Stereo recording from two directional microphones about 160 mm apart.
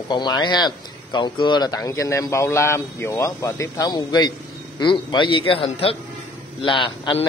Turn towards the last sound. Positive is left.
turn(degrees=30)  # may be behind; listen again after turning